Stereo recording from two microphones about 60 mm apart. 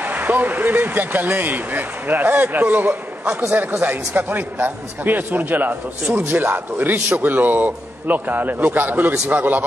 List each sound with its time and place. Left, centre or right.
0.0 s a man's voice: right